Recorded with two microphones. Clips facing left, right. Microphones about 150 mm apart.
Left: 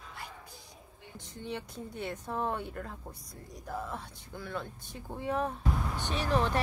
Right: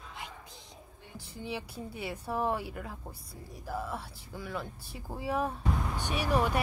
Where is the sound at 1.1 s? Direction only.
5° right (ahead or behind).